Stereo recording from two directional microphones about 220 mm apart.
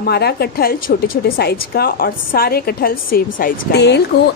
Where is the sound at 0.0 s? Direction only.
45° left (ahead or behind).